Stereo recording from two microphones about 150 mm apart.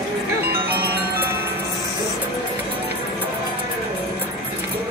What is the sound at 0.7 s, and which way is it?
Music, 90° right.